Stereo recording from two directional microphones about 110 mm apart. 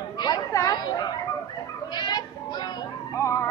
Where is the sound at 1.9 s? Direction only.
40° left (ahead or behind).